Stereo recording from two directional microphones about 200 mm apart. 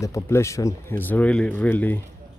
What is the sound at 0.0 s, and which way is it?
Speech, 15° left (ahead or behind).